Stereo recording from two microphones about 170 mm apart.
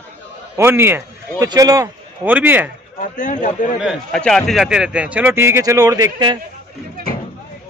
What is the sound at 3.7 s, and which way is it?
A man's voice, centre (ahead or behind).